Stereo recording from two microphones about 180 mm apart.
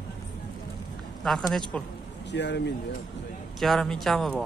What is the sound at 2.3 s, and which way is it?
Speech, 75° left (ahead or behind).